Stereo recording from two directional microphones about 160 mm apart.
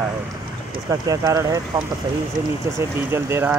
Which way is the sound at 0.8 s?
20° right (ahead or behind).